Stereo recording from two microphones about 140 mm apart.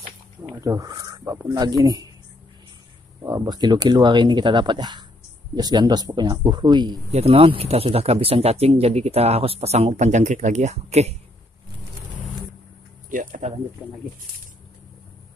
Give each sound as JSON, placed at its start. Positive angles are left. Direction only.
{"t": 0.6, "sound": "speech", "side_deg": -25}
{"t": 3.3, "sound": "speech", "side_deg": -30}
{"t": 7.1, "sound": "speech", "side_deg": -45}
{"t": 13.1, "sound": "speech", "side_deg": -65}
{"t": 13.8, "sound": "speech", "side_deg": 0}